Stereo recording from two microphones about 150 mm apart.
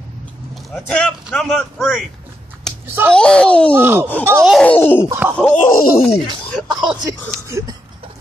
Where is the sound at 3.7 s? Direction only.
15° right (ahead or behind).